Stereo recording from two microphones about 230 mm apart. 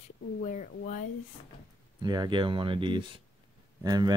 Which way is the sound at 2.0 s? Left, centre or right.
Centre.